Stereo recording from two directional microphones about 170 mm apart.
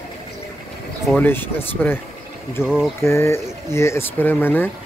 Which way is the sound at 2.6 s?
Centre (ahead or behind).